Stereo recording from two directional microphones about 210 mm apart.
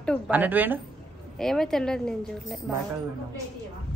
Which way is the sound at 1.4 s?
Centre (ahead or behind).